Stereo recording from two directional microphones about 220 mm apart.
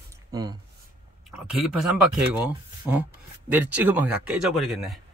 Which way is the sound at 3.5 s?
10° right (ahead or behind).